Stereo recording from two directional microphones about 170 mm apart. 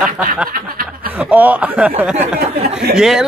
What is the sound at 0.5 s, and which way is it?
Snicker, 55° right (ahead or behind).